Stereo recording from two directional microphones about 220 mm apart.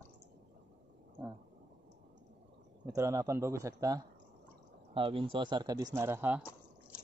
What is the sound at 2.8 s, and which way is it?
Speech, 15° right (ahead or behind).